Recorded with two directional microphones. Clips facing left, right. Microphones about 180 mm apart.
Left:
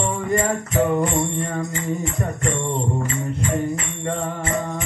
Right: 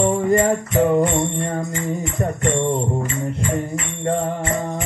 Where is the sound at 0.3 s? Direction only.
40° right (ahead or behind).